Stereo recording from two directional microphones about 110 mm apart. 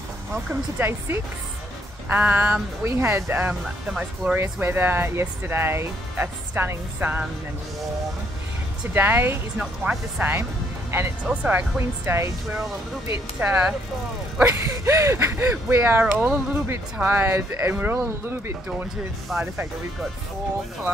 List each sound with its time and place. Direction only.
0.5 s speech: 20° right (ahead or behind)
3.6 s speech: 5° right (ahead or behind)
4.4 s speech: 20° right (ahead or behind)
8.9 s speech: 20° right (ahead or behind)
9.6 s speech: 10° right (ahead or behind)
10.9 s speech: 20° right (ahead or behind)
14.4 s speech: 25° right (ahead or behind)
19.2 s speech: centre (ahead or behind)